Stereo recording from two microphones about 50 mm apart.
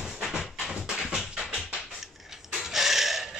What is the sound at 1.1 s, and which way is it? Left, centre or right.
Music, centre.